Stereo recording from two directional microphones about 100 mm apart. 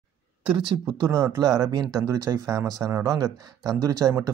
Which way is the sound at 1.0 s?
30° right (ahead or behind).